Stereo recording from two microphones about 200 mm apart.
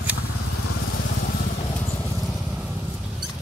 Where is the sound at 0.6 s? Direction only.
65° left (ahead or behind).